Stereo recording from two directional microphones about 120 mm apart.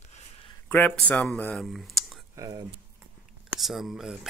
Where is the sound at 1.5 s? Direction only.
Centre (ahead or behind).